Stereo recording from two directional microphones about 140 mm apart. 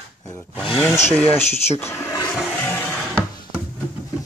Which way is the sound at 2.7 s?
15° left (ahead or behind).